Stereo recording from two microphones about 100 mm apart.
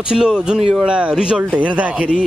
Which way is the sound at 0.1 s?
10° right (ahead or behind).